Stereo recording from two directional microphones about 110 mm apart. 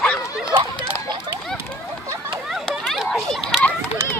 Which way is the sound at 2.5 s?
Centre (ahead or behind).